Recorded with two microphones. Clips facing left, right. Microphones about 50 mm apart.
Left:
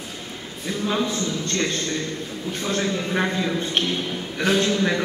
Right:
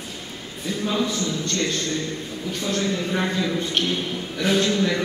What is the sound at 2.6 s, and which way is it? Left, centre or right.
A man's voice, left.